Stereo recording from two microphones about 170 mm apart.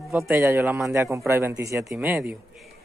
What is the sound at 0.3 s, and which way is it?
Speech, 15° right (ahead or behind).